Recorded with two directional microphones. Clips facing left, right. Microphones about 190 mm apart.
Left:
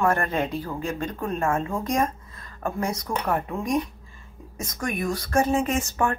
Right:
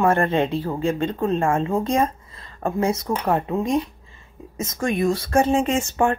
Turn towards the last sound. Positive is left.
turn(degrees=-25)  # may be behind; listen again after turning